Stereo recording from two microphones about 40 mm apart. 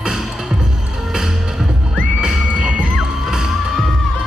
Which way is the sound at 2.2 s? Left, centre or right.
Right.